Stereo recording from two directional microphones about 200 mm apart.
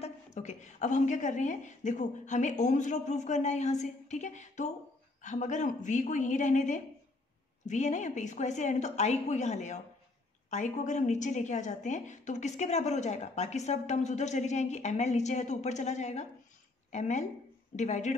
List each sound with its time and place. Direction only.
0.0 s a woman's voice: 35° left (ahead or behind)